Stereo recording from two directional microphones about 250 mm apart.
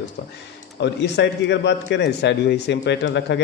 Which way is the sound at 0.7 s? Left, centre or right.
Left.